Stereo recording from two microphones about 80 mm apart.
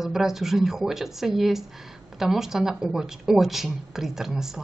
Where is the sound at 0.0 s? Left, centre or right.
Centre.